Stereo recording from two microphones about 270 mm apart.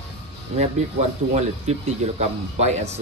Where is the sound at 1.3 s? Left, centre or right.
Right.